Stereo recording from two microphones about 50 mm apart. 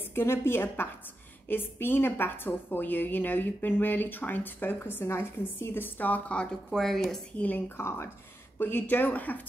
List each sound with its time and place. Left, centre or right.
0.0 s a woman's voice: left; by 6.8 s centre
6.8 s speech: centre
7.3 s a woman's voice: left
7.7 s speech: left
8.5 s a woman's voice: left